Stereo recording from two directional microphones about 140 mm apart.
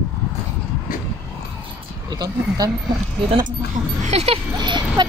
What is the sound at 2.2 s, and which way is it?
Speech, 25° right (ahead or behind).